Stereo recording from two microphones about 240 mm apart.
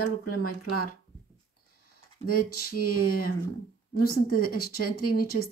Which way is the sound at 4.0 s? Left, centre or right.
Left.